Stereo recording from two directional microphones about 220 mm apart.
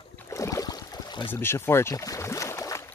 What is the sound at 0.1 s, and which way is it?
Boat, 15° left (ahead or behind).